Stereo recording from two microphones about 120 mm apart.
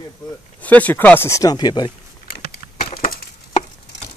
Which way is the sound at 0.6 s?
15° left (ahead or behind).